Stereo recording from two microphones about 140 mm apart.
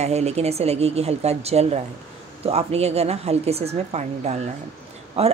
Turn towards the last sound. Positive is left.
turn(degrees=-50)  # may be behind; listen again after turning